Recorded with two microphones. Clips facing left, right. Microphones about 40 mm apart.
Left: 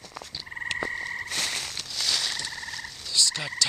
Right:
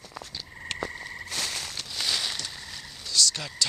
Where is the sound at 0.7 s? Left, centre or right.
Centre.